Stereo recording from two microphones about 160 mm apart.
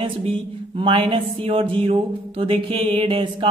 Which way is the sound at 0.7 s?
30° right (ahead or behind).